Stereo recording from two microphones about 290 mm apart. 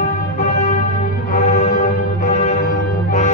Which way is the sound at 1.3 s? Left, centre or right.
Left.